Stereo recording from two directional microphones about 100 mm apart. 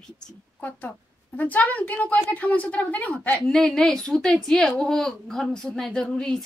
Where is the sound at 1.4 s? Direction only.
15° left (ahead or behind).